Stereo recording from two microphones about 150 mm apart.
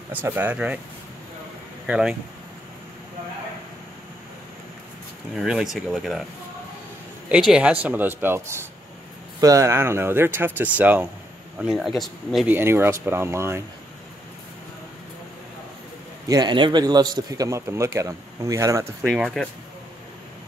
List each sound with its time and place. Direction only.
0.1 s speech: 10° right (ahead or behind)
1.9 s speech: 5° right (ahead or behind)
5.3 s speech: 5° right (ahead or behind)
7.2 s speech: 5° right (ahead or behind)
12.4 s speech: 15° right (ahead or behind)
16.3 s speech: 30° right (ahead or behind)
19.0 s speech: centre (ahead or behind)